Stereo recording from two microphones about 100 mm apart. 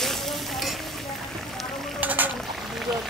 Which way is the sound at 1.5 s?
Centre (ahead or behind).